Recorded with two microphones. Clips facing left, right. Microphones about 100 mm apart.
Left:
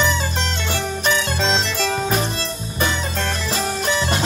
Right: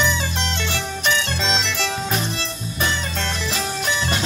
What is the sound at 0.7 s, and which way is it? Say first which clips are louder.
Music: left 3 dB; 40° left (ahead or behind).